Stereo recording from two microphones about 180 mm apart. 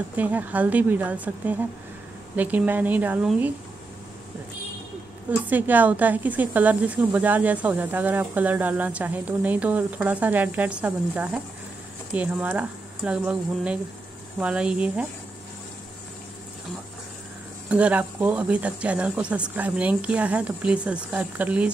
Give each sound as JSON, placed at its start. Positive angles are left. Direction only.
{"t": 0.1, "sound": "speech", "side_deg": -10}
{"t": 5.3, "sound": "speech", "side_deg": -10}
{"t": 17.6, "sound": "speech", "side_deg": -5}